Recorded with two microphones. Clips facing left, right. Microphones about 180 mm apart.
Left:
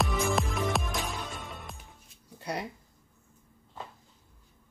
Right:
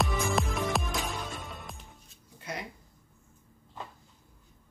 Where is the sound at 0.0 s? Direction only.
Centre (ahead or behind).